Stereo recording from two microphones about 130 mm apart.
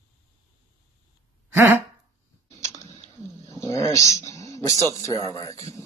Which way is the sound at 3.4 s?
20° left (ahead or behind).